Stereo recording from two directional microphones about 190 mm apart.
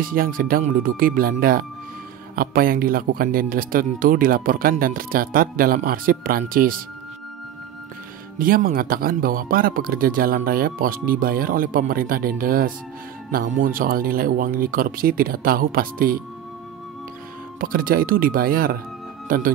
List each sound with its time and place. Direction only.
0.0 s speech: 50° right (ahead or behind)
8.4 s speech: 50° right (ahead or behind)
17.6 s speech: 50° right (ahead or behind)